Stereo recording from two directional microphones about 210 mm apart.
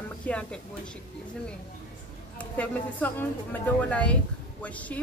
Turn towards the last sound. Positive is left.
turn(degrees=5)  # may be behind; listen again after turning